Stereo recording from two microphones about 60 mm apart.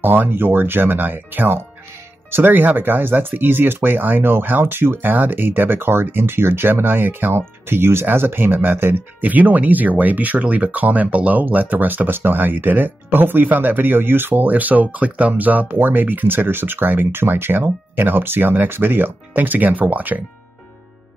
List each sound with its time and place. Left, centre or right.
0.0 s speech: right